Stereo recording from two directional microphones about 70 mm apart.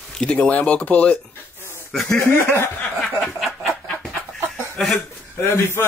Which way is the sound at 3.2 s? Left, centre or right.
Centre.